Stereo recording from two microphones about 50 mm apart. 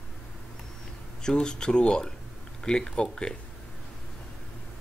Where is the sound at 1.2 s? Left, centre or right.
Centre.